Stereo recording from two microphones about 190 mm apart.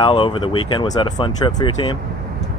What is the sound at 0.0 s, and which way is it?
Speech, 25° left (ahead or behind).